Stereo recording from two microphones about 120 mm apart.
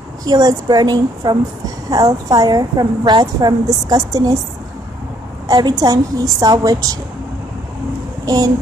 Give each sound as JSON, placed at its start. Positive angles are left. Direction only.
{"t": 0.2, "sound": "a woman's voice", "side_deg": -30}
{"t": 5.5, "sound": "a woman's voice", "side_deg": -35}